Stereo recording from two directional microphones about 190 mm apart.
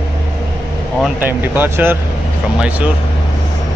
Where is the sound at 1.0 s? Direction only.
10° right (ahead or behind).